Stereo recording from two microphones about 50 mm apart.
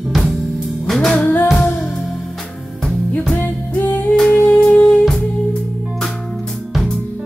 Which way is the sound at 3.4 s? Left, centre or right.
Left.